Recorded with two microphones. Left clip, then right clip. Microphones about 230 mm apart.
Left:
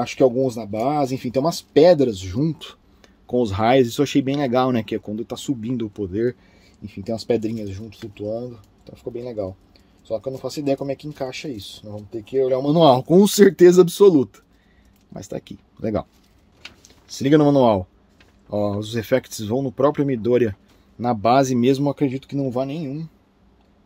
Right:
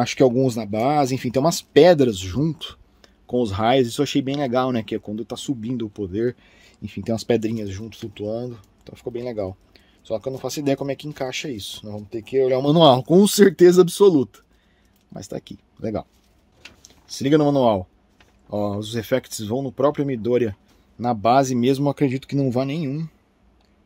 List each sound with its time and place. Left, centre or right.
0.0 s speech: right
2.6 s speech: centre
6.5 s speech: right
12.7 s speech: centre
21.9 s speech: right